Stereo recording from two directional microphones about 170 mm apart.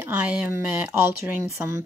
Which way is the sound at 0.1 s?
10° right (ahead or behind).